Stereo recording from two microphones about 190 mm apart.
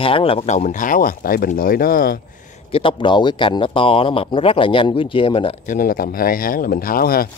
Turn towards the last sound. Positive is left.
turn(degrees=50)  # may be behind; listen again after turning